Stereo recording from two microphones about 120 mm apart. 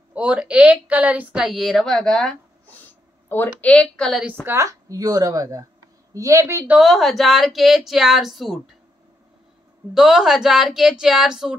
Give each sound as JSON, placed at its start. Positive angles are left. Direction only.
{"t": 0.1, "sound": "a woman's voice", "side_deg": -10}
{"t": 4.5, "sound": "speech", "side_deg": -25}
{"t": 6.8, "sound": "speech", "side_deg": 0}
{"t": 9.9, "sound": "speech", "side_deg": -5}